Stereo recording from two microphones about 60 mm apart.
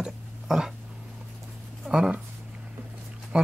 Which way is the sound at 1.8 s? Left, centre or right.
Centre.